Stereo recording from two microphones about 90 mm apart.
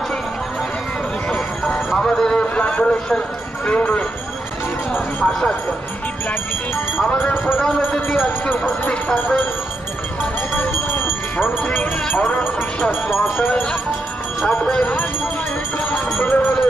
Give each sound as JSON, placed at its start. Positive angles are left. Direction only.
{"t": 1.3, "sound": "a sound", "side_deg": 5}
{"t": 3.6, "sound": "speech", "side_deg": 15}
{"t": 5.2, "sound": "speech", "side_deg": 10}
{"t": 7.1, "sound": "speech", "side_deg": 15}
{"t": 7.6, "sound": "speech", "side_deg": 5}
{"t": 8.8, "sound": "speech", "side_deg": 20}
{"t": 10.5, "sound": "a sound", "side_deg": 20}
{"t": 11.6, "sound": "speech", "side_deg": 15}